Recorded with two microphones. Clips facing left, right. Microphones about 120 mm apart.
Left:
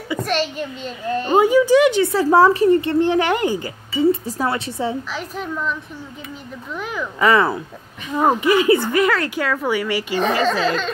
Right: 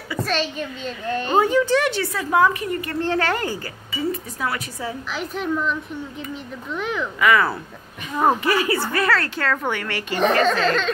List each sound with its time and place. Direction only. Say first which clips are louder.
0.1 s a child's voice: left 2 dB; 15° left (ahead or behind)
2.1 s a woman's voice: left 4 dB; 35° left (ahead or behind)
3.0 s a child's voice: left 5 dB; 15° left (ahead or behind)
4.1 s a woman's voice: left 6 dB; 30° left (ahead or behind)
5.1 s a child's voice: right 2 dB; centre (ahead or behind)
7.2 s a woman's voice: left 3 dB; 30° left (ahead or behind); by 10.9 s 5° left (ahead or behind)